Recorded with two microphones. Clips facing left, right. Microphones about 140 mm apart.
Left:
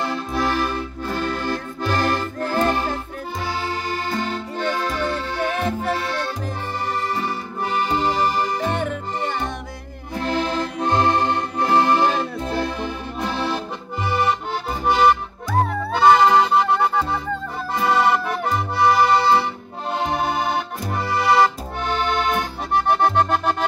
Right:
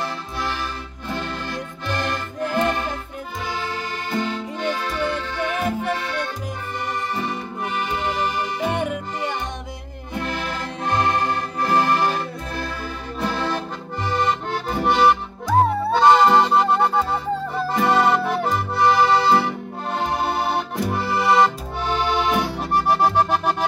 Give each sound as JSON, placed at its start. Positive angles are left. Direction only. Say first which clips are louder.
{"t": 0.4, "sound": "music", "louder": "left 6 dB", "side_deg": 50}
{"t": 3.6, "sound": "accordion", "louder": "left 3 dB", "side_deg": 35}
{"t": 7.2, "sound": "music", "louder": "left 1 dB", "side_deg": 35}
{"t": 8.6, "sound": "music", "louder": "even", "side_deg": -10}
{"t": 10.2, "sound": "accordion", "louder": "left 7 dB", "side_deg": 25}
{"t": 15.9, "sound": "music", "louder": "left 1 dB", "side_deg": 0}
{"t": 21.2, "sound": "accordion", "louder": "even", "side_deg": 0}